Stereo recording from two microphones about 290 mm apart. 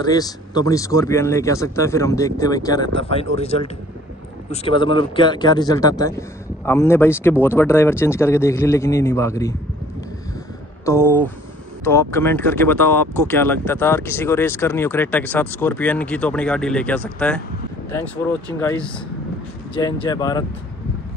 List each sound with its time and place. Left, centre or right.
0.0 s a man's voice: centre
10.9 s speech: centre